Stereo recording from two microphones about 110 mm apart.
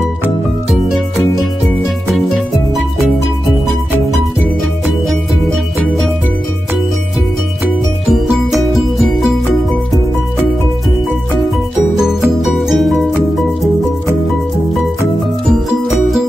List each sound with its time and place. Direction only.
0.8 s music: centre (ahead or behind)
8.1 s music: centre (ahead or behind)
12.4 s music: centre (ahead or behind)